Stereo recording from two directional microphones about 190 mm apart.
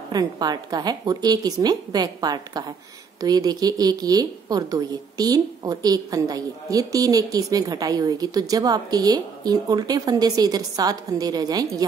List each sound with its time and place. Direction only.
0.1 s a woman's voice: 20° right (ahead or behind)